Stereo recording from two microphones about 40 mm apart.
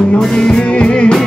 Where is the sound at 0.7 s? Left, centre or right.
Left.